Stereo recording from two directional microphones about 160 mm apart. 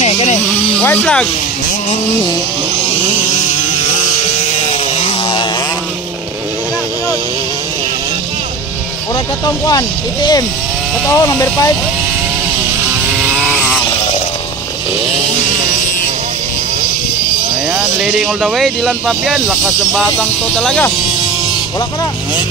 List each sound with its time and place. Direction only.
0.0 s a sound: 40° left (ahead or behind)
0.7 s speech: 10° left (ahead or behind)
4.6 s chainsaw: 40° left (ahead or behind)
9.7 s speech: 25° left (ahead or behind)
13.1 s chainsaw: centre (ahead or behind)
18.0 s speech: 5° right (ahead or behind)